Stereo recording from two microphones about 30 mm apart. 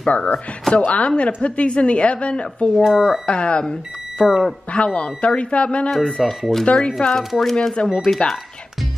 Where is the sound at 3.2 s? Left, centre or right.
Left.